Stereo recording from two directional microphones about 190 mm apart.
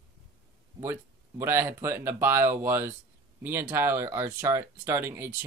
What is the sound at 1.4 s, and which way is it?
Speech, 10° right (ahead or behind).